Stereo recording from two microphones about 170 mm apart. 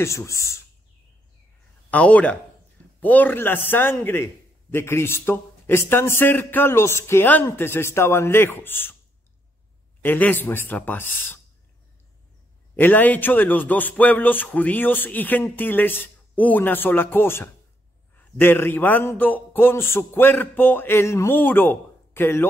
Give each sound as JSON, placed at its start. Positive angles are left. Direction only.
{"t": 0.0, "sound": "a man's voice", "side_deg": 15}
{"t": 1.9, "sound": "a man's voice", "side_deg": 10}
{"t": 10.0, "sound": "a man's voice", "side_deg": 10}
{"t": 12.7, "sound": "a man's voice", "side_deg": 10}